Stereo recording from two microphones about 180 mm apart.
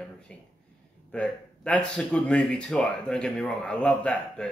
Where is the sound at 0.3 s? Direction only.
5° left (ahead or behind).